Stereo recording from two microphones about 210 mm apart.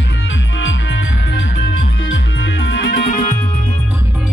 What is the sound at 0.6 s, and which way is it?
Music, 60° left (ahead or behind).